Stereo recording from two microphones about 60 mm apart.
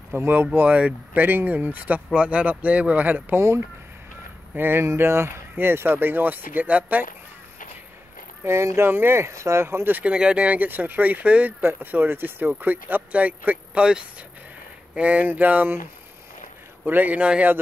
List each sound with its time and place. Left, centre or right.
0.1 s speech: right
0.6 s speech: right
1.2 s speech: right
3.3 s speech: right
4.6 s speech: right
4.8 s speech: right
8.5 s speech: right
9.8 s speech: right
10.1 s speech: centre
15.0 s speech: right
16.8 s speech: right